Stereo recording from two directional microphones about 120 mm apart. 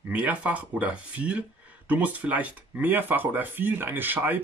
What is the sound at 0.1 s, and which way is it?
Speech, 10° right (ahead or behind).